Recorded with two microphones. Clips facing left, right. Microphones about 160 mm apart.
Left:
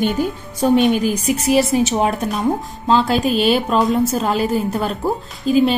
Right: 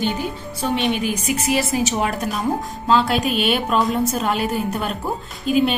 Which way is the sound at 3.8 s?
Centre (ahead or behind).